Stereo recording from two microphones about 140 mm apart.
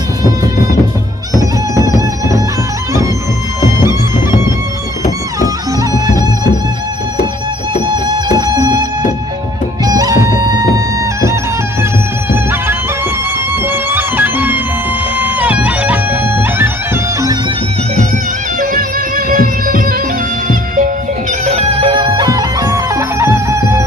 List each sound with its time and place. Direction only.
1.8 s music: 25° right (ahead or behind)
5.4 s music: 25° right (ahead or behind)
7.8 s music: 30° right (ahead or behind)
9.8 s music: 25° right (ahead or behind)
18.6 s music: 80° right
20.4 s music: 70° right (ahead or behind)
21.5 s music: 45° right (ahead or behind); by 23.8 s 20° right (ahead or behind)